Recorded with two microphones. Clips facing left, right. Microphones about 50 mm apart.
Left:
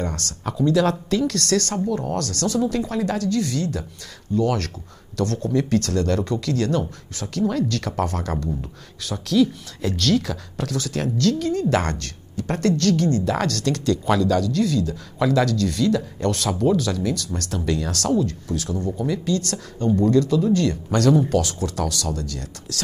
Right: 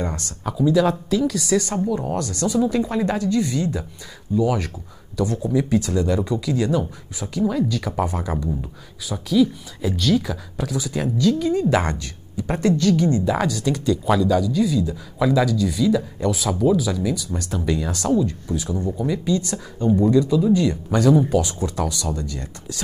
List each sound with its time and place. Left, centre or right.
0.0 s a woman's voice: centre
0.5 s a woman's voice: centre